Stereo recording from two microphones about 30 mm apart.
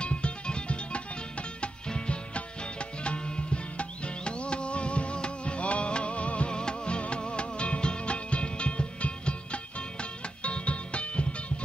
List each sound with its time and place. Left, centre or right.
0.0 s music: left
6.5 s music: left